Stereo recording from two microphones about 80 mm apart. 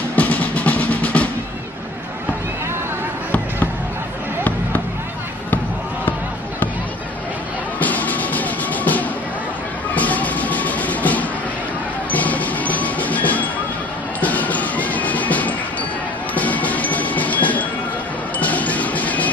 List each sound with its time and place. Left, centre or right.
0.1 s music: centre
7.8 s music: centre